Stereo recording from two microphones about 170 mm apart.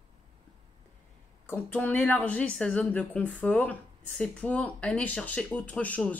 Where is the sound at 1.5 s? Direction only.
10° left (ahead or behind).